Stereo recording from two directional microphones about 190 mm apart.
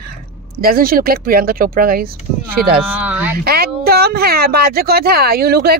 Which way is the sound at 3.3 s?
55° right (ahead or behind).